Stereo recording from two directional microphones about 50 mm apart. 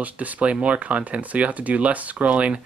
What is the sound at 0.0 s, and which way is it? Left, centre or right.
Speech, right.